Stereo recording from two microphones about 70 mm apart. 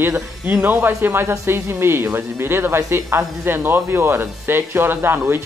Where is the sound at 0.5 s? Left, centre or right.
Right.